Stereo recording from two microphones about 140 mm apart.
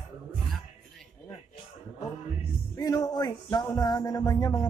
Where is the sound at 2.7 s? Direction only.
25° left (ahead or behind).